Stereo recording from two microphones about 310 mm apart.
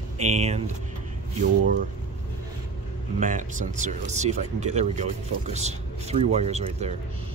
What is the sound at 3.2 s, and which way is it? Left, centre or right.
Speech, right.